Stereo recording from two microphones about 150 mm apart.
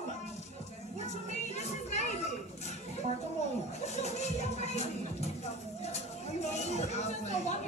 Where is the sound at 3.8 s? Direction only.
50° left (ahead or behind).